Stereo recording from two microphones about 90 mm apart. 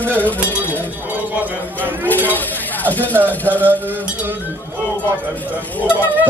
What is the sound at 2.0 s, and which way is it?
A man's voice, 20° left (ahead or behind).